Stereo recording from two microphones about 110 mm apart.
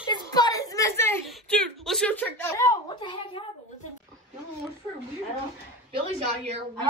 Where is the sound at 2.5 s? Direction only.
25° left (ahead or behind).